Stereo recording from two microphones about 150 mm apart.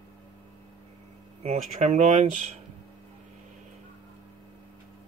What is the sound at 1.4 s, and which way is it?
Speech, 50° right (ahead or behind).